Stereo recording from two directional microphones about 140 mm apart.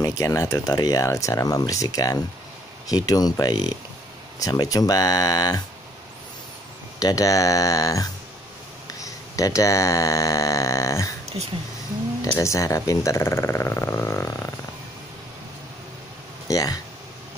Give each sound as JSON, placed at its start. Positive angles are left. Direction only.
{"t": 0.0, "sound": "speech", "side_deg": 25}
{"t": 7.0, "sound": "speech", "side_deg": 25}
{"t": 12.3, "sound": "speech", "side_deg": 20}
{"t": 16.4, "sound": "speech", "side_deg": 25}